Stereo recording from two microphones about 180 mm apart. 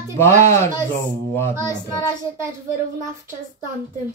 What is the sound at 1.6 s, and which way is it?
Child singing, 20° left (ahead or behind).